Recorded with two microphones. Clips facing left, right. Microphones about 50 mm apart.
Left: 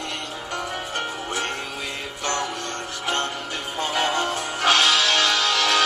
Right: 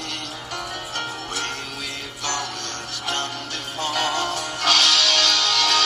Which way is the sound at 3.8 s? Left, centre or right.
Centre.